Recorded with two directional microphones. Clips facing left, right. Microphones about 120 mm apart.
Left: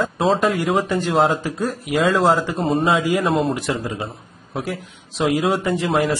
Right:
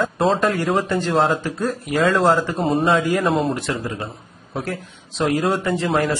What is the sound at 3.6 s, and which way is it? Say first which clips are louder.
A man's voice: left 1 dB; 15° left (ahead or behind).